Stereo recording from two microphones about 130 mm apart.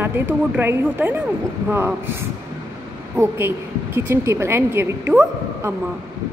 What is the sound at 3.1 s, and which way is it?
A woman's voice, 20° right (ahead or behind).